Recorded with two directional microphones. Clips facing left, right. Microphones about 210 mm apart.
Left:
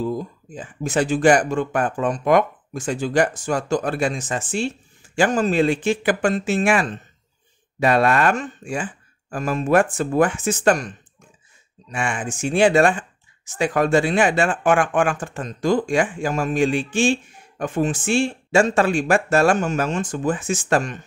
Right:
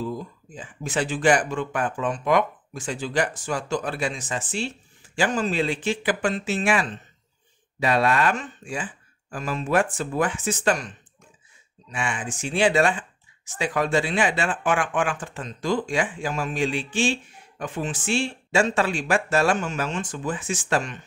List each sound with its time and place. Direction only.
0.1 s speech: 45° left (ahead or behind)